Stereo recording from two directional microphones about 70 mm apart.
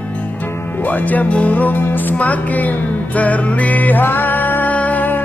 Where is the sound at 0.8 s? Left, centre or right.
Left.